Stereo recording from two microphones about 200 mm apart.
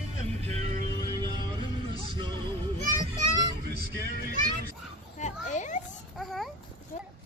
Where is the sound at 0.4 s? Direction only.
35° right (ahead or behind).